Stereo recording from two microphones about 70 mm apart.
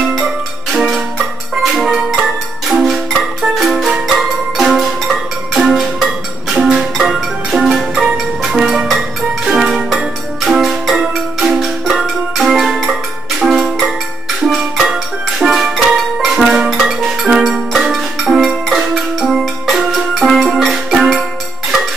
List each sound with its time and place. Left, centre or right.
0.0 s music: centre